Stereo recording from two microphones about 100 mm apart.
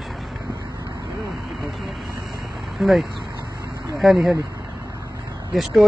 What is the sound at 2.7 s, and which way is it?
Speech, centre (ahead or behind).